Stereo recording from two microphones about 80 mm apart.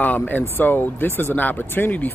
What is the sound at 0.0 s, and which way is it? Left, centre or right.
Speech, left.